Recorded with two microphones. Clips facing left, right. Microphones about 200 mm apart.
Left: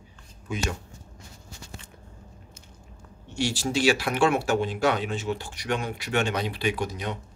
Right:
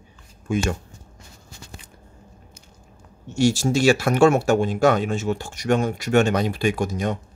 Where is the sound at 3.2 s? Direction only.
45° right (ahead or behind).